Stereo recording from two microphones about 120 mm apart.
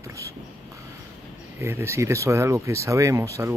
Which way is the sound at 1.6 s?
20° right (ahead or behind).